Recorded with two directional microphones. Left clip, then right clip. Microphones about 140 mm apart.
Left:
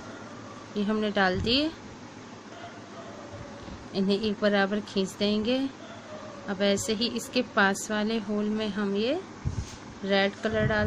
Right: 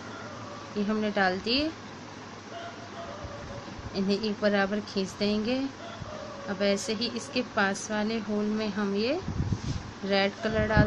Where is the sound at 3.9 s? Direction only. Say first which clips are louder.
Left 2 dB; 30° left (ahead or behind).